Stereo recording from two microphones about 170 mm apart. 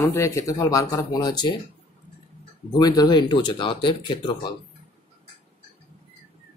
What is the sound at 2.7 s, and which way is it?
Speech, 25° left (ahead or behind).